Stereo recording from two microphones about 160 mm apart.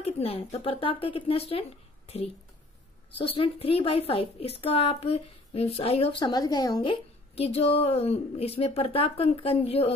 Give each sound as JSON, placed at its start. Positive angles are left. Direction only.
{"t": 0.0, "sound": "a woman's voice", "side_deg": 35}